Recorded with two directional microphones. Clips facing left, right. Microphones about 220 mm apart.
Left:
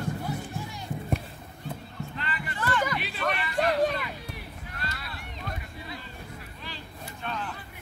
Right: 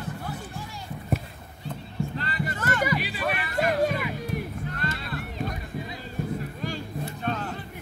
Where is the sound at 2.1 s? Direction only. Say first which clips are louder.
Right 5 dB; 40° right (ahead or behind).